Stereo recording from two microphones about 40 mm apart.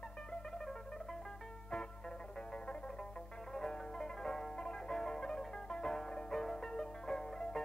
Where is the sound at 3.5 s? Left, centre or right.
Centre.